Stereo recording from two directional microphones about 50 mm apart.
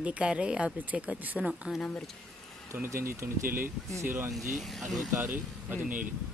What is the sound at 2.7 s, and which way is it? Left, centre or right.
Speech, right.